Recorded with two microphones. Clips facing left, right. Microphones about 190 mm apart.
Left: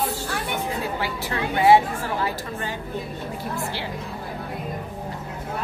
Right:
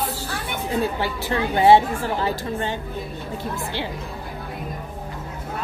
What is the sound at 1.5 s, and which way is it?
Speech, 25° right (ahead or behind).